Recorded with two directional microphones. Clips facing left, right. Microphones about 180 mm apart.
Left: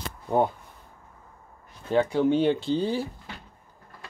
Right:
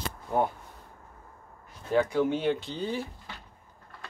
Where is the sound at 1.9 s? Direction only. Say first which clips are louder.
Left 3 dB; 25° left (ahead or behind).